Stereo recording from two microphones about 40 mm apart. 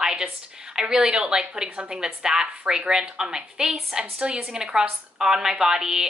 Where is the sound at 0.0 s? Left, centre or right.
Centre.